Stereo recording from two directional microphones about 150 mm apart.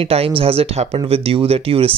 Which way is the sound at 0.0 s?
40° right (ahead or behind).